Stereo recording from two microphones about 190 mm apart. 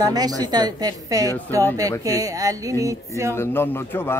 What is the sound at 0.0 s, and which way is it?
A woman's voice, 20° right (ahead or behind).